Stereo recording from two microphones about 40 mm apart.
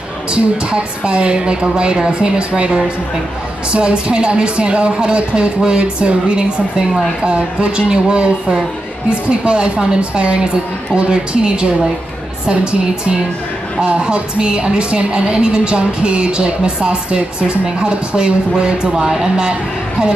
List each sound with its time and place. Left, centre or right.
0.3 s a woman's voice: right
13.7 s a woman's voice: right